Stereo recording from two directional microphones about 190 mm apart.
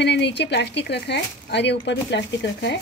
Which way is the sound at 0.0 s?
65° left (ahead or behind).